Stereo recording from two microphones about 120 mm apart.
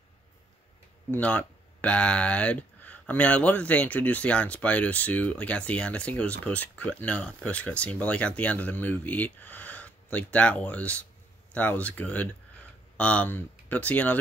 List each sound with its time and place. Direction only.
1.1 s speech: 10° left (ahead or behind)